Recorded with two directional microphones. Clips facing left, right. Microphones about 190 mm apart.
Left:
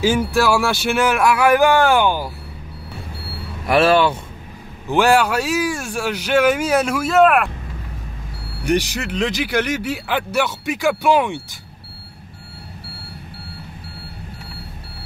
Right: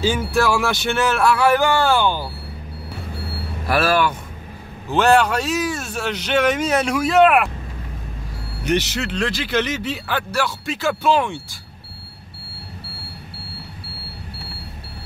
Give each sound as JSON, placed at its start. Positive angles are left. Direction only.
{"t": 0.0, "sound": "speech", "side_deg": 10}
{"t": 3.6, "sound": "speech", "side_deg": 25}
{"t": 4.8, "sound": "speech", "side_deg": 10}
{"t": 8.6, "sound": "speech", "side_deg": 10}